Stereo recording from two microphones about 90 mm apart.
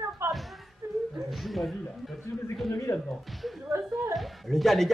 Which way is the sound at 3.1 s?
Centre (ahead or behind).